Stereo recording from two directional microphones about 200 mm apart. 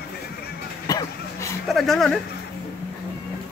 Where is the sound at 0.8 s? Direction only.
15° left (ahead or behind).